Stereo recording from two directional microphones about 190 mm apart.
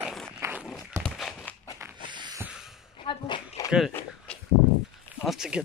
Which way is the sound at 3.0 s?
25° left (ahead or behind).